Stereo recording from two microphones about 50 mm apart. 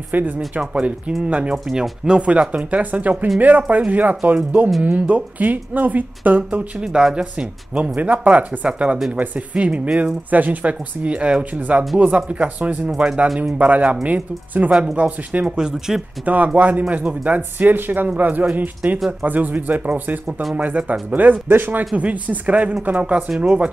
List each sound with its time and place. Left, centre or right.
0.1 s speech: right
0.6 s speech: right
2.5 s speech: right
6.8 s speech: centre; by 15.4 s right
15.4 s speech: centre
16.3 s speech: right
21.5 s speech: right